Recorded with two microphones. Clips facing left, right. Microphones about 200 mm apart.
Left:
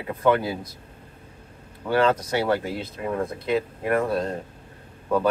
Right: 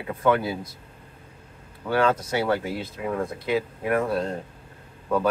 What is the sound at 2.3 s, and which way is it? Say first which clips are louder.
Speech: left 1 dB; 5° right (ahead or behind).